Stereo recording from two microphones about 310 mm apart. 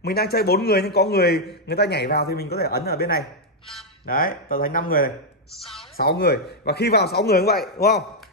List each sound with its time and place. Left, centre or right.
0.0 s a man's voice: left
5.6 s a woman's voice: centre
5.9 s a man's voice: left